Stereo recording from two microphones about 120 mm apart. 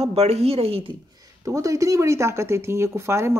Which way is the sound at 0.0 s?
60° right (ahead or behind).